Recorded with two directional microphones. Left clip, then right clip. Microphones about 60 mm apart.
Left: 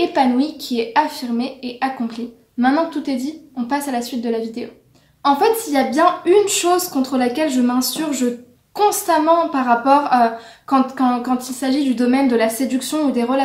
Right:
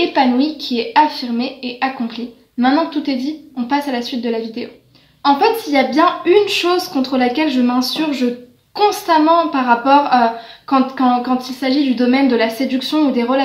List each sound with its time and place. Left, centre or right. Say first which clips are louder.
0.2 s a woman's voice: right 2 dB; left